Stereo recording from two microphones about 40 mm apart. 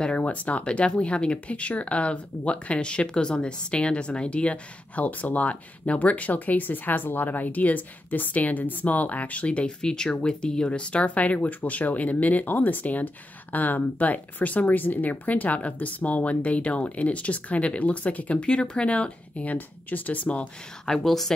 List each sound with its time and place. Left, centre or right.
0.2 s speech: left
19.4 s speech: left
20.8 s a woman's voice: centre